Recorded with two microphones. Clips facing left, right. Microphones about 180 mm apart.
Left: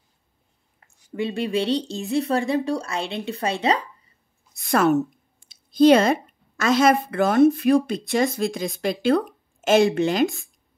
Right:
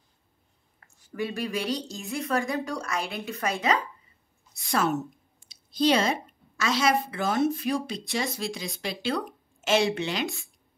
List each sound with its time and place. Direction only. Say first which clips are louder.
0.7 s a woman's voice: left 4 dB; 25° left (ahead or behind)
4.6 s a sound: left 7 dB; 55° left (ahead or behind)
5.5 s speech: left 9 dB; 50° left (ahead or behind)